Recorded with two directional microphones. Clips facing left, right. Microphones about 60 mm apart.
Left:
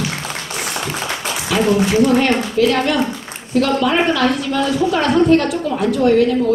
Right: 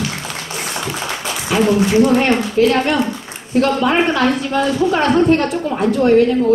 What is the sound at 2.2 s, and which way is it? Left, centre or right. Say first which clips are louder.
A woman's voice: right 1 dB; right.